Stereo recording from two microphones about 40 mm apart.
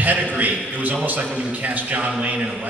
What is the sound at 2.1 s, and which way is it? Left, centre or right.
Speech, right.